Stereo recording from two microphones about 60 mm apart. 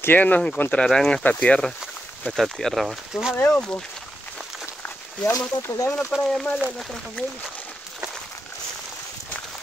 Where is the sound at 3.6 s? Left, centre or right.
Centre.